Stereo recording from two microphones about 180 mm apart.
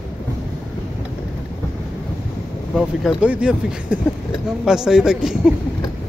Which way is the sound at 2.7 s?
5° right (ahead or behind).